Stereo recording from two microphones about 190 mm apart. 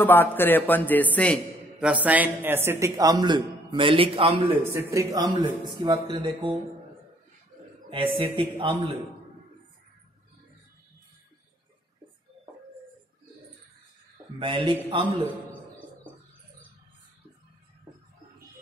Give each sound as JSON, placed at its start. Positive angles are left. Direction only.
{"t": 0.0, "sound": "a man's voice", "side_deg": 10}
{"t": 1.8, "sound": "a man's voice", "side_deg": -5}
{"t": 4.6, "sound": "speech", "side_deg": -15}
{"t": 7.9, "sound": "speech", "side_deg": -30}
{"t": 14.4, "sound": "speech", "side_deg": -25}